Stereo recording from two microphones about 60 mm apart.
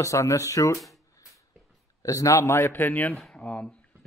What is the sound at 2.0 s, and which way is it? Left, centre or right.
Speech, left.